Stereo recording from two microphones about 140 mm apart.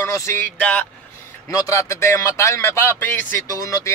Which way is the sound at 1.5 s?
25° left (ahead or behind).